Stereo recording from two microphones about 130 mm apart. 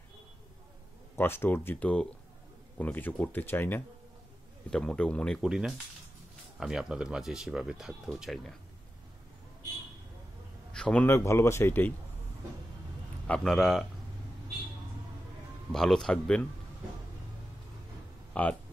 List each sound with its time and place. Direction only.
1.1 s speech: 15° left (ahead or behind)
5.4 s speech: 5° right (ahead or behind)
10.7 s a sound: 5° left (ahead or behind)
11.1 s speech: 20° left (ahead or behind)
13.3 s speech: 5° left (ahead or behind)
15.7 s speech: centre (ahead or behind)
18.3 s speech: 10° left (ahead or behind)